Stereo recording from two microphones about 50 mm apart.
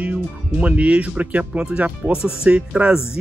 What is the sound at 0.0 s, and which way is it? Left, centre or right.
Speech, right.